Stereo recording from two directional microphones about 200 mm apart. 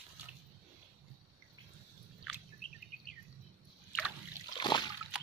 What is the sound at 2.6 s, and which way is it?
Bird vocalization, 45° left (ahead or behind).